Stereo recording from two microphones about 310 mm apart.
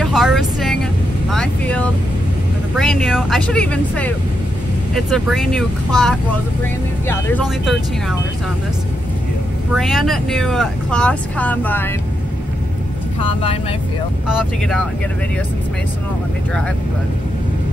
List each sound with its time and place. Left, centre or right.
0.0 s vehicle: centre
2.7 s speech: centre
9.8 s speech: centre
13.2 s speech: centre
14.2 s speech: centre